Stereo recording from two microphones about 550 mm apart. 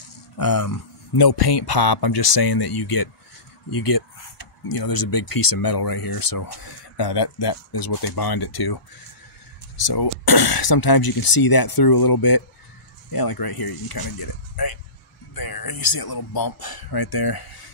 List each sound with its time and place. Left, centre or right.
0.4 s speech: left
9.8 s speech: left
15.3 s speech: left